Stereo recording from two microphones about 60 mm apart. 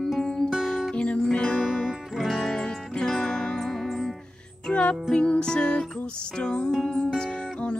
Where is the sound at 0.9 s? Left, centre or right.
Left.